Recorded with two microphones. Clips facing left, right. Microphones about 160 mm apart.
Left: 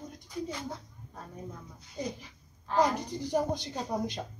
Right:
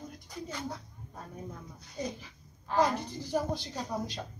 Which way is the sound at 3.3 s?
20° left (ahead or behind).